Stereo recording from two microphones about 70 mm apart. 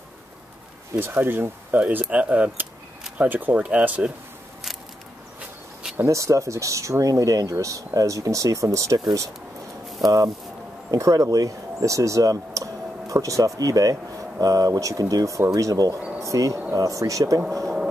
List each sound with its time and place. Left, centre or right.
0.9 s speech: right
5.9 s speech: right
10.0 s speech: right